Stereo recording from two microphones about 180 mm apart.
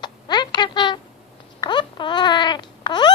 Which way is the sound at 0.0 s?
25° left (ahead or behind).